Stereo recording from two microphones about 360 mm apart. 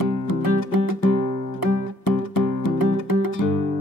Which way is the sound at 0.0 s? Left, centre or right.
Left.